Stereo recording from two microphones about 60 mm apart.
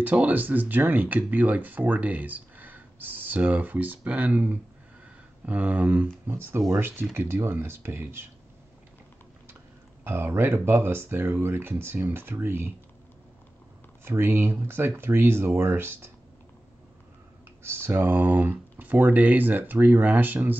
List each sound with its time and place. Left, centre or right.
0.0 s speech: right
6.2 s speech: right
10.0 s speech: right
14.0 s speech: right
17.6 s speech: right
18.1 s speech: right